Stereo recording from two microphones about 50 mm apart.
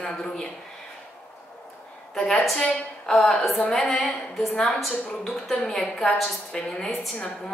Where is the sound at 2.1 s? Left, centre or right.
Centre.